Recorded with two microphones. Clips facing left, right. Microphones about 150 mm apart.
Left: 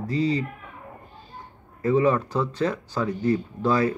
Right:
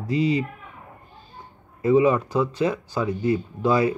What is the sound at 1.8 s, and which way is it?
A man's voice, 10° right (ahead or behind).